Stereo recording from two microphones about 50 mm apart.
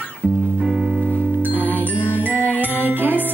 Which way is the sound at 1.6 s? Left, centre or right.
Left.